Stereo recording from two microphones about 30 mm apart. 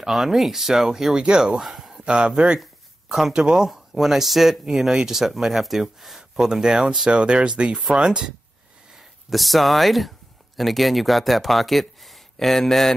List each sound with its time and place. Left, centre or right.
0.1 s speech: centre
1.2 s speech: right
1.6 s a sound: centre
2.0 s speech: right
3.1 s speech: centre
3.3 s speech: right
3.6 s a sound: right
4.0 s speech: centre
6.3 s speech: centre
7.1 s speech: right
9.3 s speech: centre